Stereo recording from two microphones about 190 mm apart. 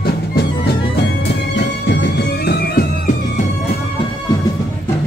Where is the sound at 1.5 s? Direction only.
65° left (ahead or behind).